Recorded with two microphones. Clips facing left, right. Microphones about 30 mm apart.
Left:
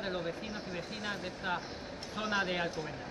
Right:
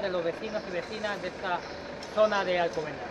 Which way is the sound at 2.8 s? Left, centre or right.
Right.